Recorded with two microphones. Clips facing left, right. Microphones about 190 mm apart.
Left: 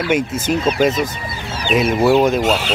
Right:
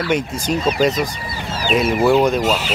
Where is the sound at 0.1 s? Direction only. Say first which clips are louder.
Left 3 dB; 5° left (ahead or behind).